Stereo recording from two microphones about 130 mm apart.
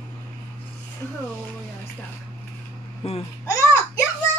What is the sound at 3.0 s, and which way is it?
Speech, 50° left (ahead or behind).